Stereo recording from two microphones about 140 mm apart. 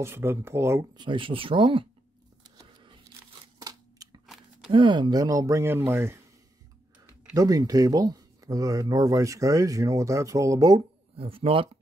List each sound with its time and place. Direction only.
0.0 s speech: 20° right (ahead or behind)
0.9 s speech: 35° right (ahead or behind)
2.4 s vehicle: 30° right (ahead or behind)
3.5 s scissors: 25° right (ahead or behind)
4.6 s speech: 35° right (ahead or behind); by 6.1 s 20° right (ahead or behind)
7.3 s speech: 25° right (ahead or behind)
11.1 s speech: 40° right (ahead or behind)